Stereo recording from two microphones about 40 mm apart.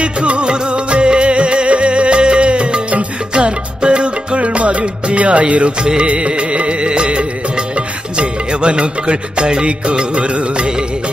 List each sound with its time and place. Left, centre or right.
0.0 s music: right